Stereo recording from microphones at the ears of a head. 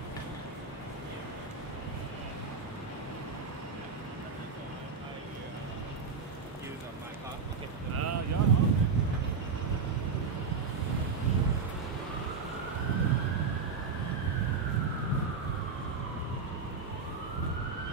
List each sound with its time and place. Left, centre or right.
7.9 s a sound: right
10.1 s vehicle: right
12.8 s emergency vehicle: right
14.0 s vehicle: right